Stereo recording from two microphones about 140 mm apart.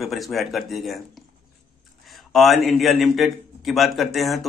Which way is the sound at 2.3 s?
Centre (ahead or behind).